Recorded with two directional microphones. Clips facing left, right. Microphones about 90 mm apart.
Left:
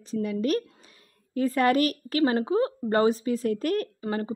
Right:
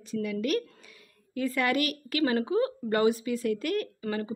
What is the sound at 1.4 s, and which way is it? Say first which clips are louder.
A woman's voice: left 5 dB; 40° left (ahead or behind).